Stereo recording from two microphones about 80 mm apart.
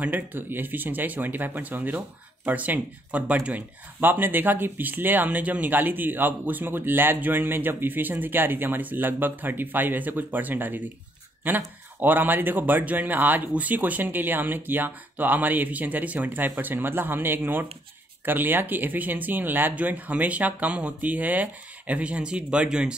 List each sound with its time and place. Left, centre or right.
0.0 s speech: right